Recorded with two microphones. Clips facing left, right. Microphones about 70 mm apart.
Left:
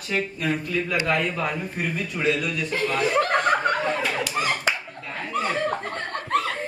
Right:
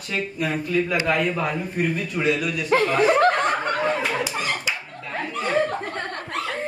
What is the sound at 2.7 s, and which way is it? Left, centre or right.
Speech, right.